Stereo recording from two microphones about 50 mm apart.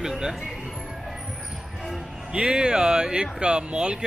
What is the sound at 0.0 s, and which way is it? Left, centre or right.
Music, centre.